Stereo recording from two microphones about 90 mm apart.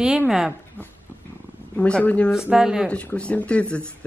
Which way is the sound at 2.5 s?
5° right (ahead or behind).